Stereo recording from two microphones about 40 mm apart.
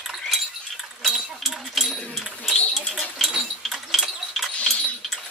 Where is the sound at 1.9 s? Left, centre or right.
Centre.